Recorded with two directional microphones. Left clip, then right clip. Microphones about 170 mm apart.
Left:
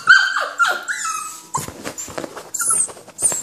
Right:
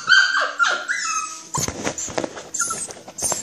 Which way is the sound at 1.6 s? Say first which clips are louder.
Right 5 dB; 20° right (ahead or behind).